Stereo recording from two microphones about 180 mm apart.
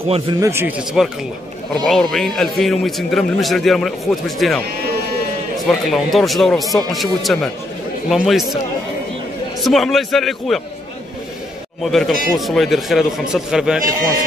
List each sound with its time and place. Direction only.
0.0 s a man's voice: 35° right (ahead or behind)
0.4 s a man's voice: 15° right (ahead or behind)
5.9 s a man's voice: centre (ahead or behind)
9.6 s a man's voice: centre (ahead or behind)
11.8 s a man's voice: centre (ahead or behind)